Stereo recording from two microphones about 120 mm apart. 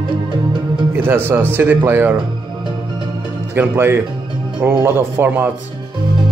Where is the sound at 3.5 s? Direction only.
20° right (ahead or behind).